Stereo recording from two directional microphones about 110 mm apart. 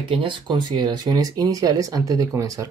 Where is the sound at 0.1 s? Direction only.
50° right (ahead or behind).